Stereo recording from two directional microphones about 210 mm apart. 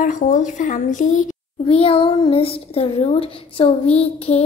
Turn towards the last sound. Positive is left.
turn(degrees=30)  # may be behind; listen again after turning